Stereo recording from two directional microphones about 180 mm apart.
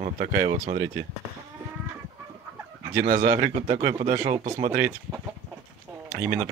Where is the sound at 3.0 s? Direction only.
45° right (ahead or behind).